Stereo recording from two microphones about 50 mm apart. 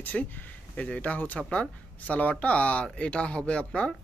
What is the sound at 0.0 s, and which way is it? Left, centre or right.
Speech, left.